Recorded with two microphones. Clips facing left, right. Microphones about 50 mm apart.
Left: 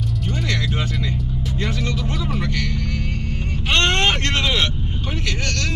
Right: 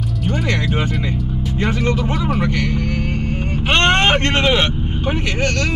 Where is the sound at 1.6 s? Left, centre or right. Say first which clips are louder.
Right 7 dB; right.